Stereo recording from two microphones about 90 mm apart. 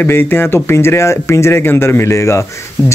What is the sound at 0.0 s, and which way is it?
Speech, 25° left (ahead or behind).